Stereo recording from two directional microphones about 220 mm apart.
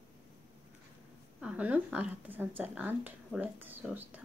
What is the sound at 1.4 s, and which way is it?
A woman's voice, 5° right (ahead or behind).